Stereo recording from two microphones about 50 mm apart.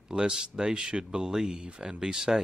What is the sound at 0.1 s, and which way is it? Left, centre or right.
Speech, centre.